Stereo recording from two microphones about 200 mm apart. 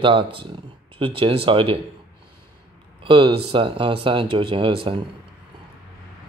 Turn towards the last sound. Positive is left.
turn(degrees=-25)  # may be behind; listen again after turning